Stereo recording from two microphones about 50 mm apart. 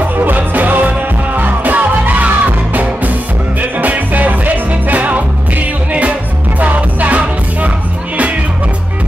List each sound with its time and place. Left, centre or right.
0.2 s music: right
6.6 s music: right